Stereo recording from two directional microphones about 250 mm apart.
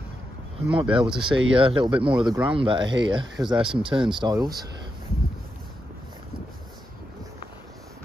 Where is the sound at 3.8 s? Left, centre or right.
Centre.